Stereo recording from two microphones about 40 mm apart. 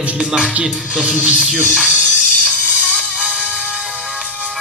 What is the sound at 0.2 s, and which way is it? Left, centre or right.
Speech, right.